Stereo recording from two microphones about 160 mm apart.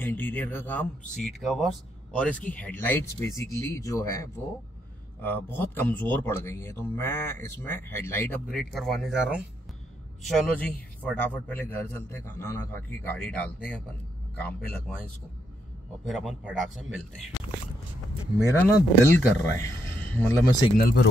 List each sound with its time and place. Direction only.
0.0 s a man's voice: 10° left (ahead or behind)
1.2 s a man's voice: centre (ahead or behind)
8.5 s a man's voice: centre (ahead or behind)
16.1 s speech: 5° right (ahead or behind)
18.4 s a man's voice: 15° left (ahead or behind)
20.7 s speech: 85° left